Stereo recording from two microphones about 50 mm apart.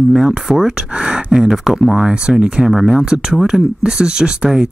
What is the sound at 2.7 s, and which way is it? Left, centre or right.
Speech, centre.